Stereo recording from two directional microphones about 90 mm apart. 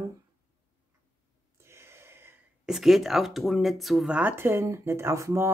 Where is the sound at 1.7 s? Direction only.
30° right (ahead or behind).